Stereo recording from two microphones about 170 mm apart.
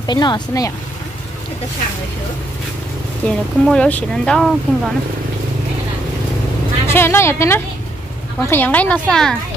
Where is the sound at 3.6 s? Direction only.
5° left (ahead or behind).